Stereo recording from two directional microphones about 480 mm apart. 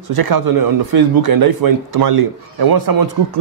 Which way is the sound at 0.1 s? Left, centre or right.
Right.